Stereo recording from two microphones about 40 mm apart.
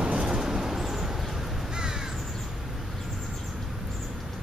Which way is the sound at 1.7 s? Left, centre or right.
Centre.